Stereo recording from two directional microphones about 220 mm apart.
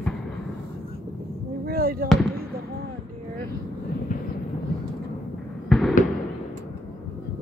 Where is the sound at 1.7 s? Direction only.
40° right (ahead or behind).